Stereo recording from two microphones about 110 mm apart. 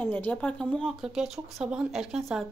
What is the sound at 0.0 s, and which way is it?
Speech, 15° left (ahead or behind).